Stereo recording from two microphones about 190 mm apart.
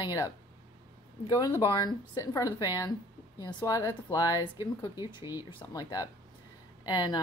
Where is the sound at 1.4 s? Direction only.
20° left (ahead or behind).